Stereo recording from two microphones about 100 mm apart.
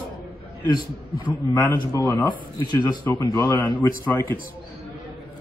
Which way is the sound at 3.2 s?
35° left (ahead or behind).